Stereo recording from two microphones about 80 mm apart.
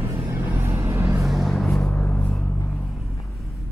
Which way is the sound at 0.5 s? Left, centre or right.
Right.